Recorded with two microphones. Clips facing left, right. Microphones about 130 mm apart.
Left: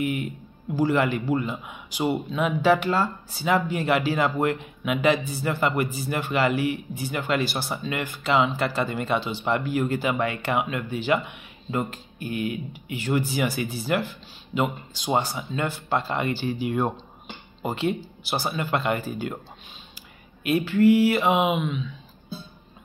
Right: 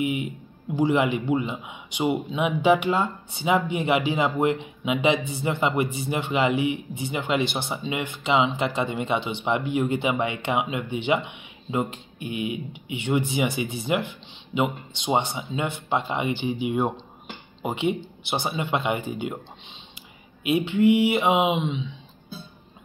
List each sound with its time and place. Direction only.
0.0 s a man's voice: 20° right (ahead or behind)
20.4 s speech: 20° right (ahead or behind)